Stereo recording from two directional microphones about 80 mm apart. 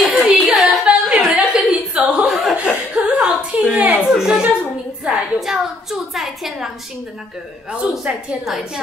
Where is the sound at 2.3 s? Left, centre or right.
Centre.